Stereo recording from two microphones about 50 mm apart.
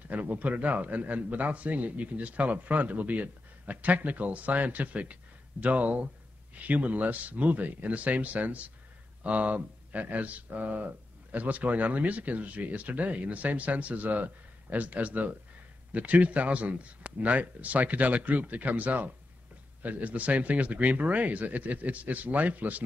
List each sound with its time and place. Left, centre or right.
0.1 s speech: right